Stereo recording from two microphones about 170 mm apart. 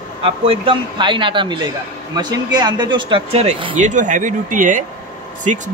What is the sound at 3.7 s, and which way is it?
Speech, 45° right (ahead or behind).